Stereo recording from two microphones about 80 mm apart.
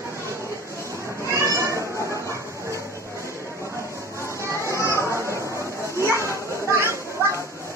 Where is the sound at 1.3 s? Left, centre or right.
Right.